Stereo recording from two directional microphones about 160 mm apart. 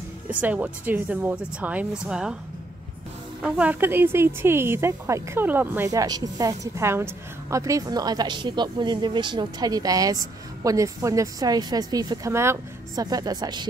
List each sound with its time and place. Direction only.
0.3 s speech: 10° right (ahead or behind)
3.4 s speech: 10° right (ahead or behind); by 13.7 s 25° right (ahead or behind)